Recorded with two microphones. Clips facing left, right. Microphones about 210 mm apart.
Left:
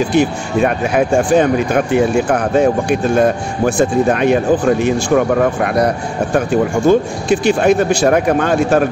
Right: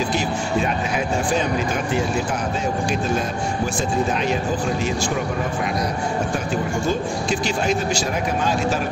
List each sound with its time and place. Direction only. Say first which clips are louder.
0.1 s speech: left 8 dB; 60° left (ahead or behind)
6.9 s speech: left 12 dB; 60° left (ahead or behind)